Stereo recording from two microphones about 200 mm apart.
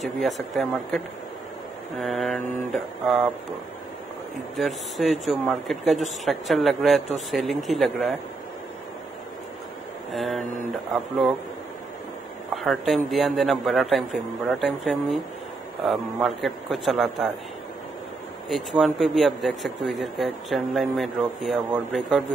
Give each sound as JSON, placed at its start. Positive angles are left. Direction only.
{"t": 2.0, "sound": "speech", "side_deg": 0}
{"t": 4.6, "sound": "speech", "side_deg": 0}
{"t": 10.1, "sound": "speech", "side_deg": 0}
{"t": 12.6, "sound": "speech", "side_deg": 0}
{"t": 18.5, "sound": "speech", "side_deg": 0}